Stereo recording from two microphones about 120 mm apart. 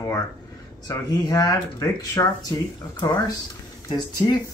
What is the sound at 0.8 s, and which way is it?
Speech, 30° left (ahead or behind).